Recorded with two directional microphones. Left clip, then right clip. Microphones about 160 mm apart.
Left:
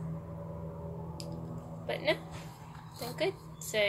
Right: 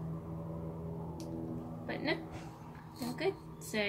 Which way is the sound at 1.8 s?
25° right (ahead or behind).